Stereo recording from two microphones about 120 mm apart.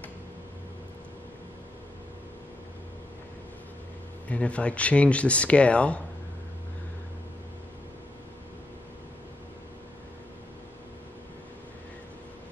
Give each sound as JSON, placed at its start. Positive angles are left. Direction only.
{"t": 4.3, "sound": "speech", "side_deg": 10}